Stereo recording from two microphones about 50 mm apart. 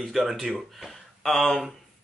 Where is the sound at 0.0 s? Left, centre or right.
Centre.